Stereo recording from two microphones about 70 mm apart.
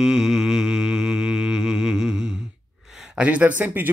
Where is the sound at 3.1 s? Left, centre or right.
Centre.